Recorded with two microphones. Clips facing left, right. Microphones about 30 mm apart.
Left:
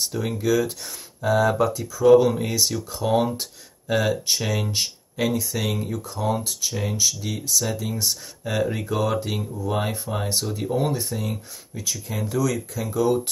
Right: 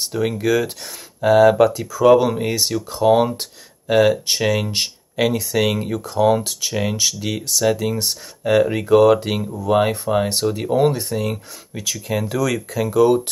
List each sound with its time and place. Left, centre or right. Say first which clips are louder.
0.0 s speech: right 5 dB; right
1.6 s speech: right 7 dB; right
2.0 s speech: right 2 dB; right
6.8 s speech: right 4 dB; right
7.8 s speech: right 5 dB; right
11.8 s speech: right 6 dB; right
12.8 s speech: right 7 dB; right